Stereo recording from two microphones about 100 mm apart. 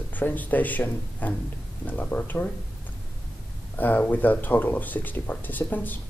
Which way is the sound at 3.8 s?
20° left (ahead or behind).